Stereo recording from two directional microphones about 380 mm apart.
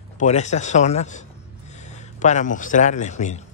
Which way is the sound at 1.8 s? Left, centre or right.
Centre.